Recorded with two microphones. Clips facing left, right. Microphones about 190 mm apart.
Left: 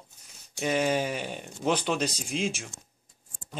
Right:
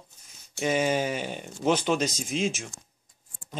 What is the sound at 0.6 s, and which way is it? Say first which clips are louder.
Speech: right 1 dB; 5° right (ahead or behind).